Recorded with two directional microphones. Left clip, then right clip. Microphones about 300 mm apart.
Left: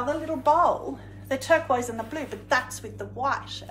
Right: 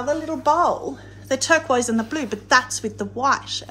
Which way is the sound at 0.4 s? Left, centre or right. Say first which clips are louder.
Right 2 dB; right.